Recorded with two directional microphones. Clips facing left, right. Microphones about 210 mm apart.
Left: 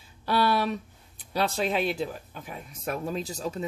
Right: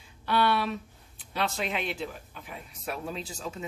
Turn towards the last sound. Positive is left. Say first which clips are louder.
# left 5 dB
turn(degrees=40)  # may be behind; listen again after turning